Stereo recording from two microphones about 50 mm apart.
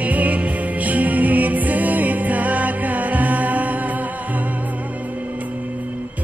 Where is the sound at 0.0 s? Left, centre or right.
Right.